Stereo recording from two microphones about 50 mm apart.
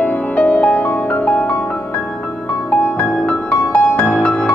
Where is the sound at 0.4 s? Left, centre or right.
Left.